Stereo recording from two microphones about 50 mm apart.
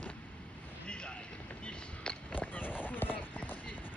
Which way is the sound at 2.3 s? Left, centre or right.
Left.